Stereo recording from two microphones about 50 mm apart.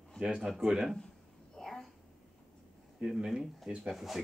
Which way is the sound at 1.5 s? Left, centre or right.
Centre.